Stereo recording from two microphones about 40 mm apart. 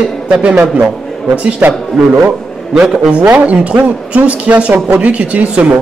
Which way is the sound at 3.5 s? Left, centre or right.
Right.